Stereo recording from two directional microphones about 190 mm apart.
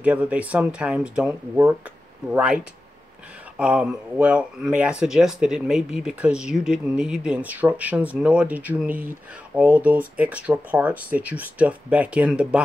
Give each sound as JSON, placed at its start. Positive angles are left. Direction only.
{"t": 0.0, "sound": "speech", "side_deg": -5}